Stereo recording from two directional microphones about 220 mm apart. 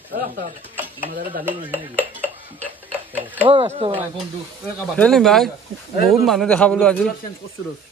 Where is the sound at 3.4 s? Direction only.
25° right (ahead or behind).